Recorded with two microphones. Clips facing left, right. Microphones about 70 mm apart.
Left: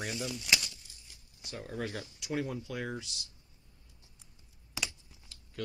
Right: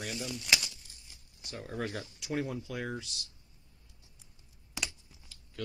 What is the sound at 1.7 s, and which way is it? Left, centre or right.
Speech, centre.